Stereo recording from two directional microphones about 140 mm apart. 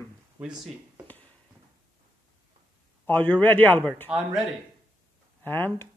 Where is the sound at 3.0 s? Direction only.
10° left (ahead or behind).